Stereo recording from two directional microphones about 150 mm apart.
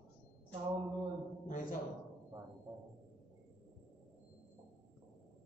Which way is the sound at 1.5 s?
60° left (ahead or behind).